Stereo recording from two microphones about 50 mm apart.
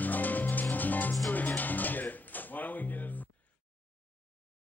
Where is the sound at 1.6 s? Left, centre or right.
Left.